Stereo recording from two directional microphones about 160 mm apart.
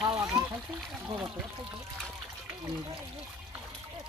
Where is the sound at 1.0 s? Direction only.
20° right (ahead or behind).